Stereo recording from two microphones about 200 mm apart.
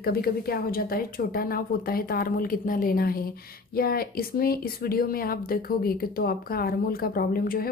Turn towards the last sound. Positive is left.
turn(degrees=50)  # may be behind; listen again after turning